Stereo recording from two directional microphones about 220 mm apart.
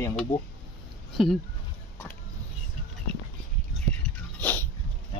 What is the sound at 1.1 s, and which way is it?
Speech, centre (ahead or behind).